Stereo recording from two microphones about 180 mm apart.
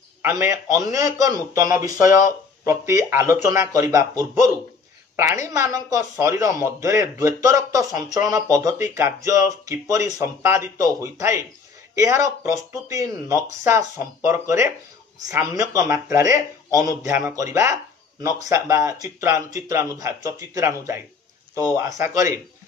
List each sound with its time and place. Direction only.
0.2 s speech: 15° right (ahead or behind)